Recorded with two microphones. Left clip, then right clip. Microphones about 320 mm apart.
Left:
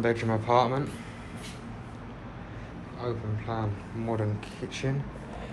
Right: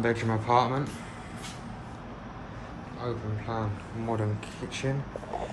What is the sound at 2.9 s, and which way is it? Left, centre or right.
Speech, centre.